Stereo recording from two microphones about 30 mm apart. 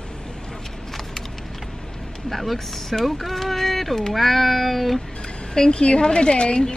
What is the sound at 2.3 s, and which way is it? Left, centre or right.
Speech, centre.